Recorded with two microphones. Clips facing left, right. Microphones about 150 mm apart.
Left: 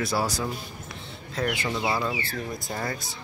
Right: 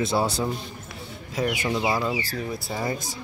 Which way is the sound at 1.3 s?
15° right (ahead or behind).